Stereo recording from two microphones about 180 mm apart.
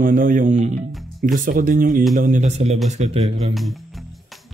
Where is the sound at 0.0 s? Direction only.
50° right (ahead or behind); by 3.5 s 35° right (ahead or behind).